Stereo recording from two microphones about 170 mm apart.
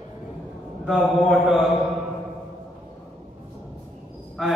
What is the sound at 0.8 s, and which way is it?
Speech, centre (ahead or behind).